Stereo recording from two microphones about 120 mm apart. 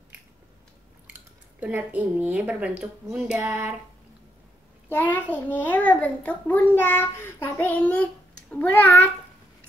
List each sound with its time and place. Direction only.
1.0 s speech: 15° right (ahead or behind)
4.9 s a child's voice: 15° left (ahead or behind)